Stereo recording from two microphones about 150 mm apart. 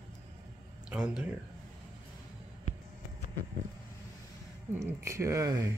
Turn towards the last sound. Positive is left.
turn(degrees=-20)  # may be behind; listen again after turning